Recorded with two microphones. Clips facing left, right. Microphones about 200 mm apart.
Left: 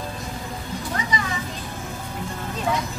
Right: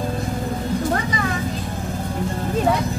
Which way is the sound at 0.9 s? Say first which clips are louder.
Right 4 dB; 55° right (ahead or behind).